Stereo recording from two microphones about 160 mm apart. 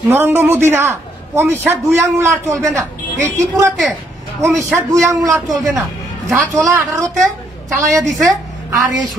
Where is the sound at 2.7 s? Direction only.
5° left (ahead or behind).